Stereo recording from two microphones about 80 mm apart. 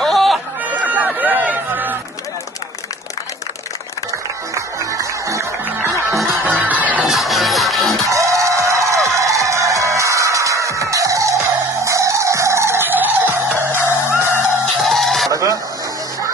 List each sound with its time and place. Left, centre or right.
0.0 s music: centre
0.8 s a sound: centre
4.6 s music: right
5.7 s music: right
7.0 s music: centre
8.1 s music: right
13.7 s music: left
14.8 s chicken: centre
15.3 s chicken: right